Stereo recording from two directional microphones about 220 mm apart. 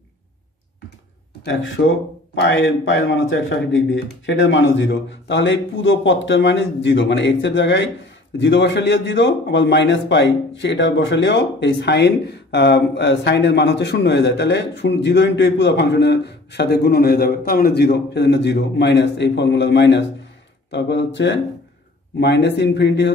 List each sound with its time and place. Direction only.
1.4 s a man's voice: 55° left (ahead or behind)